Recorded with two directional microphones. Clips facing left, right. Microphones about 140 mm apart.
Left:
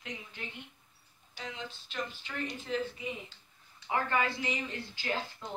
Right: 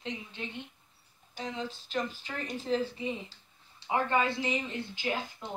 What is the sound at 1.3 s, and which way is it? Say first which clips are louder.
Speech: right 6 dB; 35° right (ahead or behind).